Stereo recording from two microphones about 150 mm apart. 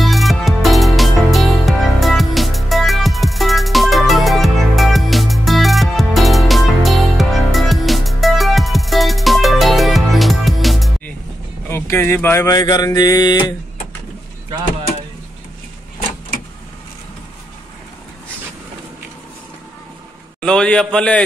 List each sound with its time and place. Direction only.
0.0 s music: centre (ahead or behind)
11.6 s speech: 15° left (ahead or behind)
20.3 s a man's voice: 5° left (ahead or behind)